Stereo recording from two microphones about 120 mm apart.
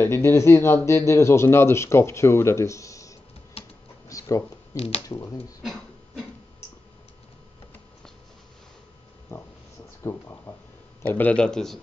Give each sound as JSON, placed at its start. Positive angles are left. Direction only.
{"t": 0.0, "sound": "speech", "side_deg": 20}
{"t": 4.1, "sound": "a sound", "side_deg": 25}
{"t": 4.7, "sound": "speech", "side_deg": 60}
{"t": 5.0, "sound": "speech", "side_deg": 25}
{"t": 5.6, "sound": "a sound", "side_deg": 0}
{"t": 9.3, "sound": "a man's voice", "side_deg": 20}